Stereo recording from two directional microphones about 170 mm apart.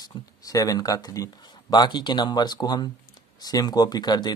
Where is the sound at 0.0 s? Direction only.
20° left (ahead or behind).